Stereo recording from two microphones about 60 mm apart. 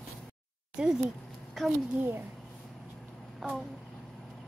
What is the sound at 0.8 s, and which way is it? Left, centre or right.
Speech, centre.